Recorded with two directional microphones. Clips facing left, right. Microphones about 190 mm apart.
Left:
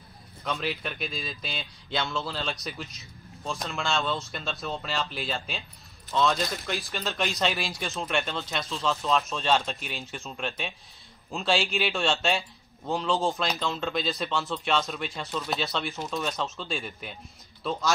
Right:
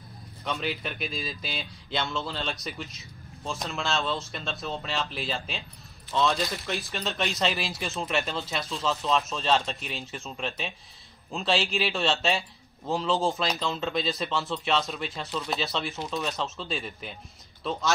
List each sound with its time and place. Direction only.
0.4 s a man's voice: centre (ahead or behind)